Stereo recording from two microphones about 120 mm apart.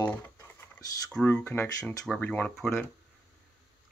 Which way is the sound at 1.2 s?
15° left (ahead or behind).